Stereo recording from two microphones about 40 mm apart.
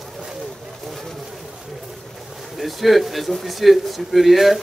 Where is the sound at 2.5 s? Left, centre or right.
Centre.